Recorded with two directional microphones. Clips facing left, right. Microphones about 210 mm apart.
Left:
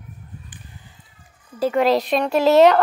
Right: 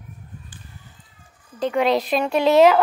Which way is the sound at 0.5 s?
20° left (ahead or behind).